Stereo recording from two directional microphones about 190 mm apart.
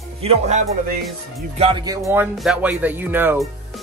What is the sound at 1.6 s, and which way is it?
Speech, 25° right (ahead or behind).